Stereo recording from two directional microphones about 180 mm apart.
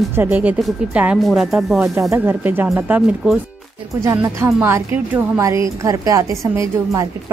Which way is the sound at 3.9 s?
15° right (ahead or behind).